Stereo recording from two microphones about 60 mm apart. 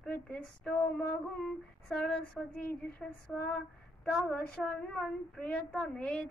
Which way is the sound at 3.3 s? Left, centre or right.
Left.